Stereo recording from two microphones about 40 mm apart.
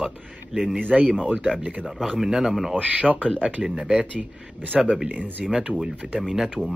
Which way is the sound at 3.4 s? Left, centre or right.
Right.